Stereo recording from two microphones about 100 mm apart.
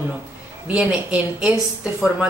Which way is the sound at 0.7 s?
10° right (ahead or behind).